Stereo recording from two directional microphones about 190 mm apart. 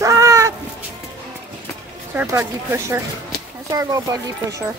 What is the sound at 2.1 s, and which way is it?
A woman's voice, 15° right (ahead or behind).